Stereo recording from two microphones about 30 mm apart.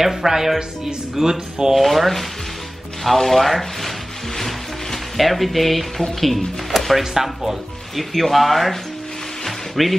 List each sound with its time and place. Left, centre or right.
0.0 s speech: centre
1.8 s speech: centre
4.4 s music: centre
6.2 s speech: centre
7.0 s speech: centre
7.9 s speech: centre
9.8 s speech: centre